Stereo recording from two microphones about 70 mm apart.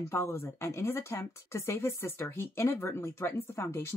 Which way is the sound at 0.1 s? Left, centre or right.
Left.